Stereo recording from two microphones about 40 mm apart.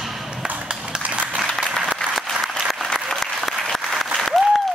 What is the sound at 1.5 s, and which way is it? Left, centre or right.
Applause, centre.